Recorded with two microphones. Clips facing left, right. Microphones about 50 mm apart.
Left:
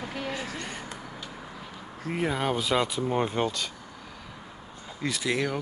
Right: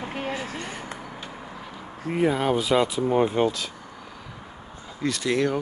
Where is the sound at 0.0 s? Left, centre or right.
Right.